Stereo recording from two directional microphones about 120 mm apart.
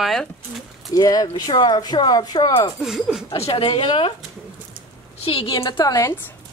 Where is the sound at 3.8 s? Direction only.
45° left (ahead or behind).